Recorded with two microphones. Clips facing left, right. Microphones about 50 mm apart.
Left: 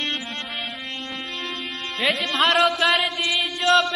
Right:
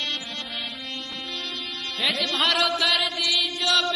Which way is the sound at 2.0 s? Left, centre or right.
Left.